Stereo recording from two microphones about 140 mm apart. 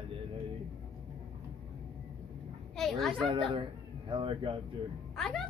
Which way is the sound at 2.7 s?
Centre (ahead or behind).